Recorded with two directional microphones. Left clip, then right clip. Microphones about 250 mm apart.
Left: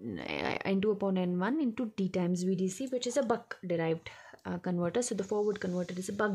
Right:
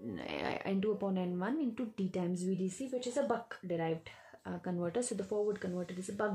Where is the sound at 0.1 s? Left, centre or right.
Left.